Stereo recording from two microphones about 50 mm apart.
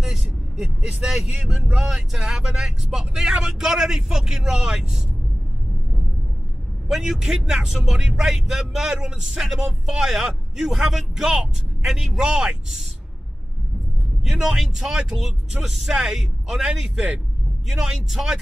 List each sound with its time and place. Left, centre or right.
0.0 s vehicle: centre
0.6 s a man's voice: centre
6.9 s a man's voice: centre
14.2 s a man's voice: centre